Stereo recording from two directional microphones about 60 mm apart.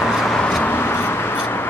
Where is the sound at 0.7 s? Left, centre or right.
Left.